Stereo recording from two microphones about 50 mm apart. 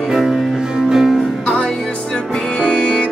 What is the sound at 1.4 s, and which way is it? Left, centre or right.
Music, left.